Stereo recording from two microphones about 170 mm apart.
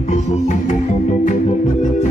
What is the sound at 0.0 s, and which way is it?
Music, 45° left (ahead or behind).